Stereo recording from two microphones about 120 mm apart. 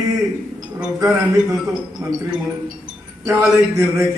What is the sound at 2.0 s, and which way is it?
Speech, 25° right (ahead or behind).